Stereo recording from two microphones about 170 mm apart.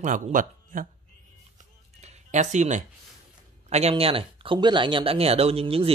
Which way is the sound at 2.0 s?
45° right (ahead or behind).